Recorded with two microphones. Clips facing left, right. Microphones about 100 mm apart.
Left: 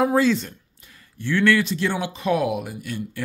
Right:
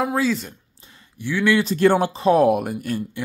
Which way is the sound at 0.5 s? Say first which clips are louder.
Right 1 dB; 25° right (ahead or behind).